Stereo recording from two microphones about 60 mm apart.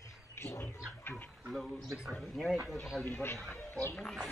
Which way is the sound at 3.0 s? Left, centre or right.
Left.